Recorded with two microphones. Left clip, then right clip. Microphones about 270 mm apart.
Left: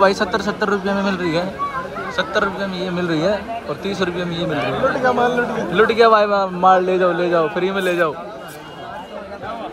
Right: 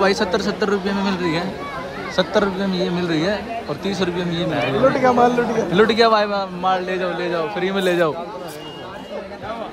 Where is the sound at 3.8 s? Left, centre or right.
Centre.